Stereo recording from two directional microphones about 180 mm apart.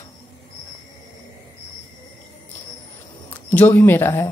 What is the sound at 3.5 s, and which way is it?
Speech, 10° left (ahead or behind).